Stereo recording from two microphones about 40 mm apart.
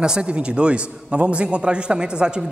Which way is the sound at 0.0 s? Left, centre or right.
Right.